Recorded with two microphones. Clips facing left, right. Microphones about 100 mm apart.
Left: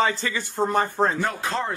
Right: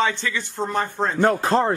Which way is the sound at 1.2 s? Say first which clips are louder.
Right 8 dB; 40° right (ahead or behind).